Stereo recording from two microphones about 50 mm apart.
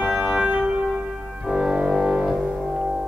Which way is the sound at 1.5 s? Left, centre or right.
Centre.